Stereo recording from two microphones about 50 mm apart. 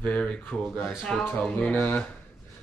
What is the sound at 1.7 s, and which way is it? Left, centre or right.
Speech, left.